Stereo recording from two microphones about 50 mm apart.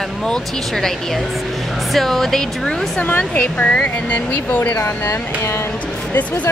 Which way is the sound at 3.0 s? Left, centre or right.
Left.